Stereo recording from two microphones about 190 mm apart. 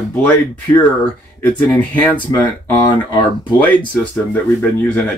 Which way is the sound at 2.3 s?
25° left (ahead or behind).